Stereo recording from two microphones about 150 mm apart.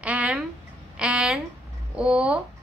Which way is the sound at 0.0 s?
10° right (ahead or behind).